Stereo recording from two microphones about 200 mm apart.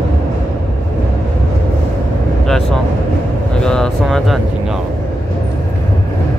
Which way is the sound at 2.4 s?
Centre (ahead or behind).